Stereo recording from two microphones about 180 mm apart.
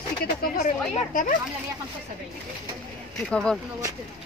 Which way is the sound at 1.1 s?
45° left (ahead or behind).